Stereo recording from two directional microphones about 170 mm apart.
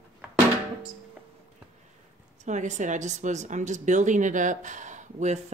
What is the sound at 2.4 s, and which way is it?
Speech, 45° right (ahead or behind).